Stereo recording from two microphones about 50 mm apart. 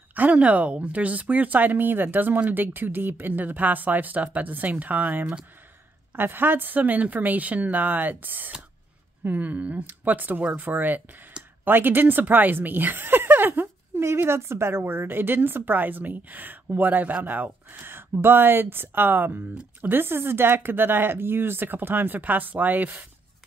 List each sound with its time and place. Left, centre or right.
0.1 s speech: right
6.1 s speech: right